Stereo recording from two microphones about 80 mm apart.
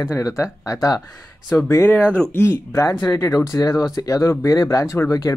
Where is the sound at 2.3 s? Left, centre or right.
Left.